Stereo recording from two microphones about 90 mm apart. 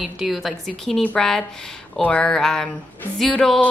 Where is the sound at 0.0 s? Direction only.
Centre (ahead or behind).